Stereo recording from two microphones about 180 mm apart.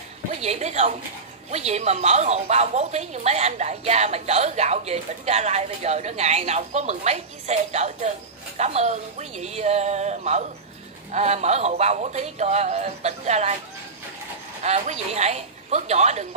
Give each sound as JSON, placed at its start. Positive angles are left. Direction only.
{"t": 0.4, "sound": "a woman's voice", "side_deg": -40}
{"t": 14.6, "sound": "a woman's voice", "side_deg": -40}